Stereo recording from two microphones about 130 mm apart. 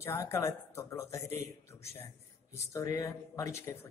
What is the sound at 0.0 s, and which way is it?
A man's voice, 20° left (ahead or behind).